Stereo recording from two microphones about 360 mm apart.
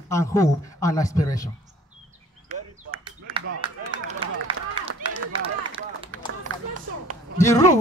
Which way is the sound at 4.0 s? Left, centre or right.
Right.